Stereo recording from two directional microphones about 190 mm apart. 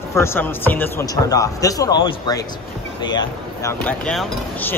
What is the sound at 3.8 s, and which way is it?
Speech, 5° left (ahead or behind).